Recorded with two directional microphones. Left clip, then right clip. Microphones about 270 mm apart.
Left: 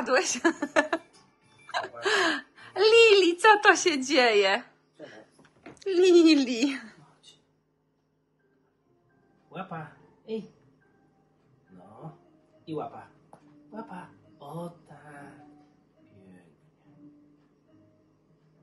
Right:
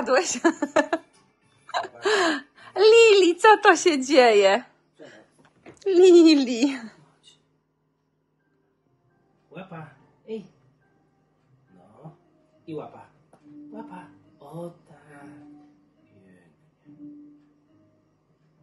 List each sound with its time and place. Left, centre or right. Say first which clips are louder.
0.0 s a woman's voice: right 3 dB; centre
1.7 s gasp: right 3 dB; centre
5.8 s speech: right 5 dB; centre
15.0 s a sound: left 1 dB; left